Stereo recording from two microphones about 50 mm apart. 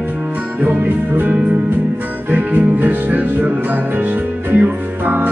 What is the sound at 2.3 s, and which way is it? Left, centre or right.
Music, right.